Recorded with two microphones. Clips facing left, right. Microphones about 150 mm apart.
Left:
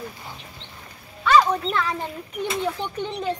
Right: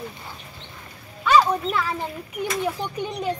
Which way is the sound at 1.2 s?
10° right (ahead or behind).